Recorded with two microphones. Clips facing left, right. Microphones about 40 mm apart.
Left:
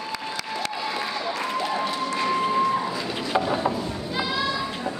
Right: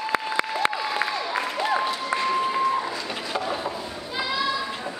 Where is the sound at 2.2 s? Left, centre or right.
Centre.